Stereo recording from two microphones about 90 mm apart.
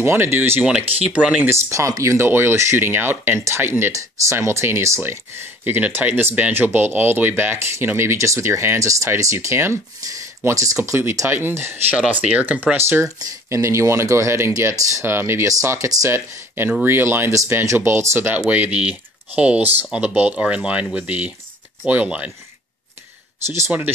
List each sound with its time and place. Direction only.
0.0 s speech: 25° right (ahead or behind)
0.6 s speech: 10° right (ahead or behind)
1.5 s speech: 35° right (ahead or behind)
2.1 s speech: 25° right (ahead or behind)